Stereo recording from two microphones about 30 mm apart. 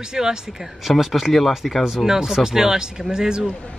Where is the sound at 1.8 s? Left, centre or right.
Centre.